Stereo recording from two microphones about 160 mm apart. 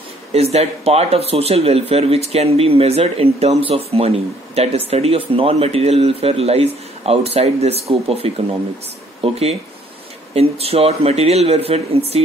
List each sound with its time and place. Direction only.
0.3 s speech: 40° right (ahead or behind)